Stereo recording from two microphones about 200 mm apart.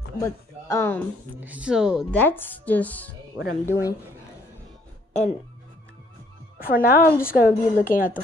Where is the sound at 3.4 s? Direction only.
10° right (ahead or behind).